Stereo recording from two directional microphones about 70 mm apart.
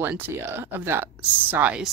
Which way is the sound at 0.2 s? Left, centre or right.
Right.